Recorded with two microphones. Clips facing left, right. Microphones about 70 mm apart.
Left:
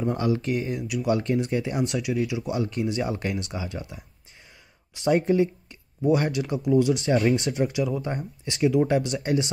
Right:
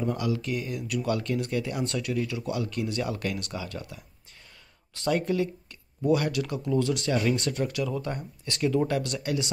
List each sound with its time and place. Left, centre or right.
0.1 s speech: left
0.8 s speech: centre
1.1 s speech: left
7.2 s speech: left
7.4 s speech: centre
9.2 s speech: left